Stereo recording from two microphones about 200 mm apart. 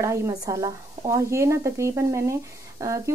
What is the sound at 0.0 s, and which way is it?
A woman's voice, 15° right (ahead or behind).